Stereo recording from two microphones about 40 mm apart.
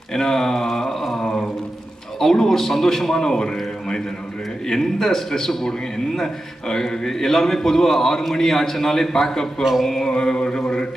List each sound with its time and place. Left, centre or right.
0.1 s a sound: centre
2.1 s a man's voice: centre
4.6 s a man's voice: centre
9.6 s speech: centre
9.8 s a man's voice: centre